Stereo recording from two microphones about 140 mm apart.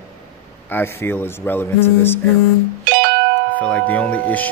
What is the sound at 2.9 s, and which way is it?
Music, 90° right.